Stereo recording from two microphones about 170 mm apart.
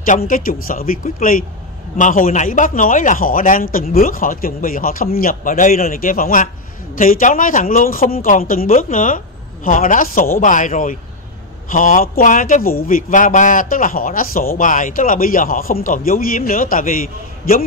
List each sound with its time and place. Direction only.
0.0 s a man's voice: 55° left (ahead or behind)